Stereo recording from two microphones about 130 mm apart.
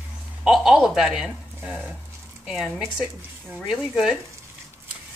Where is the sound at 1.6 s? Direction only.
10° right (ahead or behind).